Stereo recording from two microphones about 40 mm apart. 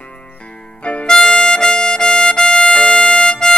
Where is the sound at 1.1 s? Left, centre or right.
Centre; by 3.2 s left.